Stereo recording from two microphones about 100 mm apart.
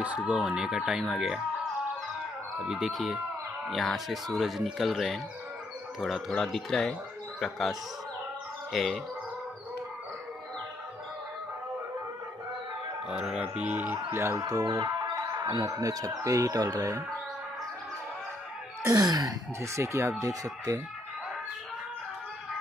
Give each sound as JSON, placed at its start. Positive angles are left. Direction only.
{"t": 0.0, "sound": "speech", "side_deg": -15}
{"t": 2.6, "sound": "speech", "side_deg": -5}
{"t": 8.7, "sound": "speech", "side_deg": 0}
{"t": 13.1, "sound": "speech", "side_deg": -10}
{"t": 13.9, "sound": "speech", "side_deg": -30}
{"t": 18.8, "sound": "speech", "side_deg": -35}